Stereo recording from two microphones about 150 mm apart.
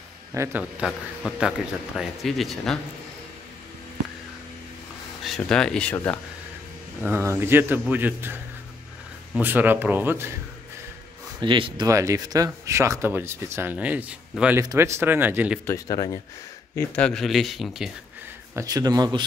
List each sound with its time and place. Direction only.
0.3 s speech: 15° right (ahead or behind); by 2.8 s centre (ahead or behind)
5.4 s speech: 5° left (ahead or behind)
7.0 s speech: 15° right (ahead or behind)
9.4 s speech: 10° right (ahead or behind)
11.4 s speech: 35° right (ahead or behind); by 15.6 s 10° right (ahead or behind)
15.6 s speech: 25° left (ahead or behind)
16.9 s speech: 5° left (ahead or behind)
18.5 s speech: 20° right (ahead or behind)